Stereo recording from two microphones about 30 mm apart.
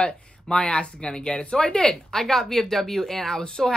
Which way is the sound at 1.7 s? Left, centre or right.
Left.